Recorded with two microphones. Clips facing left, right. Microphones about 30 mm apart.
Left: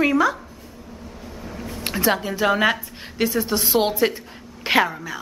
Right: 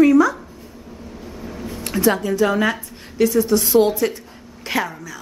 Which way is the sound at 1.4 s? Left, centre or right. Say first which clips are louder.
Right 2 dB; centre.